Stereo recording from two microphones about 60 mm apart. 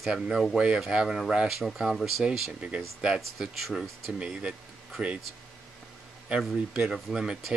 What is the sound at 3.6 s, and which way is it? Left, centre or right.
Speech, centre.